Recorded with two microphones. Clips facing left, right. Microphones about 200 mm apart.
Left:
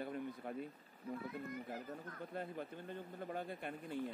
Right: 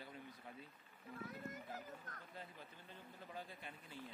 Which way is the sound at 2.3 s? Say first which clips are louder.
Left 13 dB; 55° left (ahead or behind).